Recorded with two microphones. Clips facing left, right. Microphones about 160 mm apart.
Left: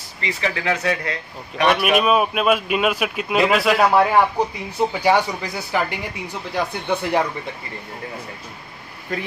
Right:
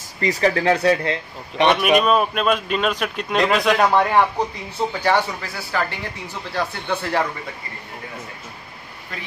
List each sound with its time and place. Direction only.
0.2 s speech: 40° right (ahead or behind)
1.7 s a man's voice: 5° left (ahead or behind)